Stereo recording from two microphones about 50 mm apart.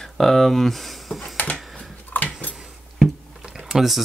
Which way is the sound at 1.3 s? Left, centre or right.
Left.